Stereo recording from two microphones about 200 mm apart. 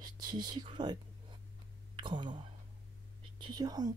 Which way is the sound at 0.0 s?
20° right (ahead or behind).